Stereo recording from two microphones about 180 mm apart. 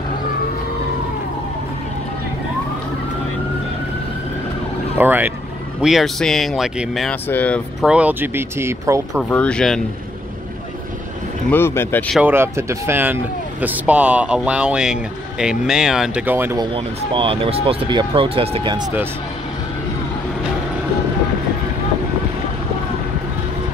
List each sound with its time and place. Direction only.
4.9 s speech: 10° right (ahead or behind); by 7.6 s 10° left (ahead or behind)
7.8 s speech: 5° right (ahead or behind)
9.3 s speech: 5° left (ahead or behind)
11.5 s speech: 10° left (ahead or behind)
12.2 s speech: 10° right (ahead or behind)
16.5 s speech: 30° right (ahead or behind)